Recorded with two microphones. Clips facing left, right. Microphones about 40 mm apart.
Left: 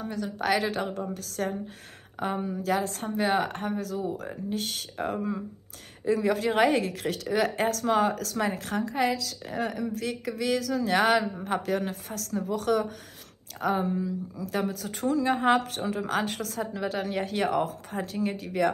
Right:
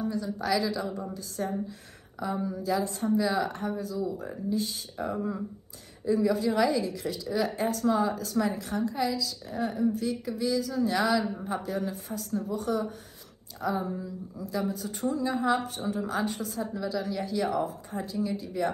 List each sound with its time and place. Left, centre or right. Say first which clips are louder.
0.0 s speech: even; left
1.1 s a woman's voice: left 1 dB; left
2.1 s speech: left 1 dB; left
6.0 s a woman's voice: even; left
11.4 s a woman's voice: left 3 dB; left
13.6 s a woman's voice: left 4 dB; left